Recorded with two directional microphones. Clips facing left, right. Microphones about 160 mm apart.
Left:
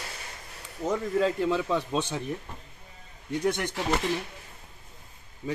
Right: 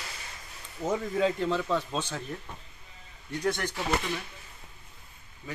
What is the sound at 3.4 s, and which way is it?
Speech, 20° left (ahead or behind).